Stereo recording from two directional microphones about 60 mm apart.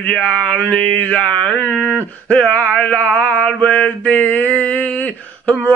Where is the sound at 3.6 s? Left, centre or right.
Left.